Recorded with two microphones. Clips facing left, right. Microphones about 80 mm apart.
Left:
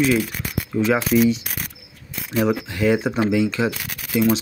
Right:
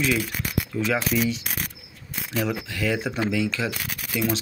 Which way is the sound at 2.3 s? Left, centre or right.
Left.